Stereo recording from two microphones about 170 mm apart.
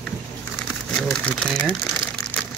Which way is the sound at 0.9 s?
5° left (ahead or behind).